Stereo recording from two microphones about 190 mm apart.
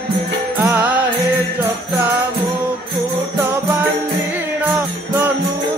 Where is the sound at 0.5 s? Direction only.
5° right (ahead or behind).